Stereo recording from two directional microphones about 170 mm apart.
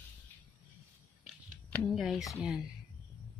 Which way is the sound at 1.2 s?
5° left (ahead or behind).